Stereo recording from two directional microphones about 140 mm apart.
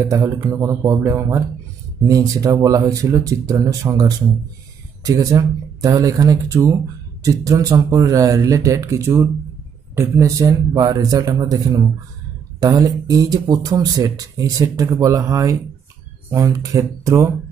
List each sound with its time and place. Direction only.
0.0 s speech: 20° right (ahead or behind)